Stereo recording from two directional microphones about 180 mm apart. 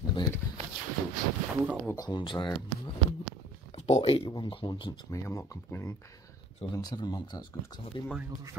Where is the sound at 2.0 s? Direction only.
25° left (ahead or behind).